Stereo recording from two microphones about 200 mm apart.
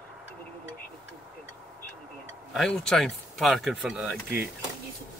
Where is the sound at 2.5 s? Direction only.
5° left (ahead or behind).